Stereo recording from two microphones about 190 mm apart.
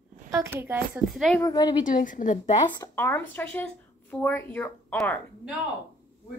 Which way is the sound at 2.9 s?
10° left (ahead or behind).